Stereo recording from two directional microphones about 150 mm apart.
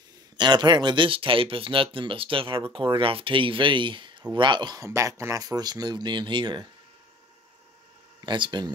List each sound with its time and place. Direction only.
0.4 s speech: 30° right (ahead or behind)
8.3 s speech: 30° right (ahead or behind)